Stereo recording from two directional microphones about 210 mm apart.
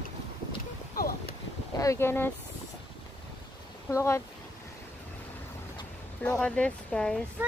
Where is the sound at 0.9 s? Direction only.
45° left (ahead or behind).